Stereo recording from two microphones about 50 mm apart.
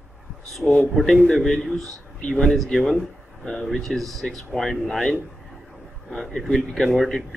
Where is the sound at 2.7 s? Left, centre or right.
Centre.